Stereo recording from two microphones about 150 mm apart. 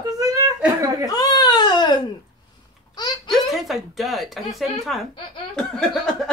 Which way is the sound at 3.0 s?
30° left (ahead or behind).